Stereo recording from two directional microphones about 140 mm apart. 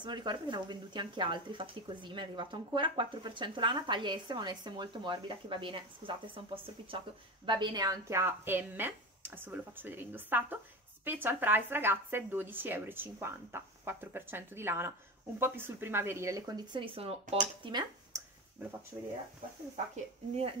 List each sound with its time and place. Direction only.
0.0 s a woman's voice: 30° right (ahead or behind)
18.1 s a sound: 20° right (ahead or behind)
18.9 s speech: 20° right (ahead or behind)